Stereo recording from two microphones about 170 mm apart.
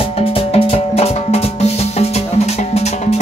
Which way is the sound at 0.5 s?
35° left (ahead or behind).